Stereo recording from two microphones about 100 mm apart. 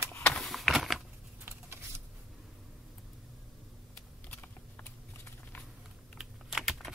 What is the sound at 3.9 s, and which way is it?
Typing, 15° left (ahead or behind).